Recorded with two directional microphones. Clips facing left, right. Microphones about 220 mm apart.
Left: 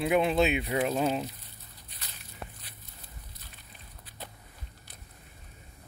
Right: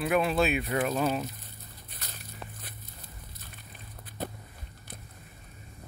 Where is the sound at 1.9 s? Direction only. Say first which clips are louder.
Right 4 dB; 45° right (ahead or behind).